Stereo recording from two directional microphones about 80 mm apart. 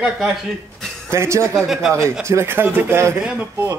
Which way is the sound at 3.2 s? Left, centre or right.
Centre.